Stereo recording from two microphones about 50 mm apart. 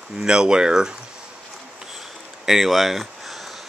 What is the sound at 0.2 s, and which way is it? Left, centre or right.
Speech, centre.